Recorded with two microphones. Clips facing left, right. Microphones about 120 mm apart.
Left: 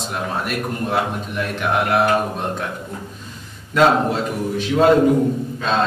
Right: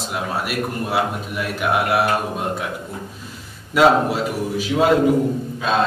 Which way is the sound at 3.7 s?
5° right (ahead or behind).